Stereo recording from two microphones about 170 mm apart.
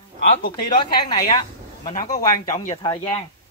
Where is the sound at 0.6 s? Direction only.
25° left (ahead or behind).